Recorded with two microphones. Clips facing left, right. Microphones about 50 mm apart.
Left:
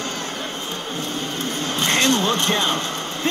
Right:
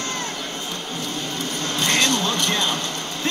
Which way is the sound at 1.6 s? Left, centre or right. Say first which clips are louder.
Left 1 dB; left.